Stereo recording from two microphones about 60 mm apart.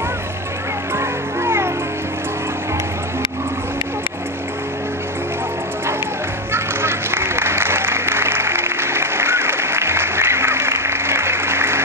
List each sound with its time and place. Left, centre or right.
0.9 s music: right
6.5 s applause: right